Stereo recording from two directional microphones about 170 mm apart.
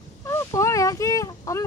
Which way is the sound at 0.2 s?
15° left (ahead or behind).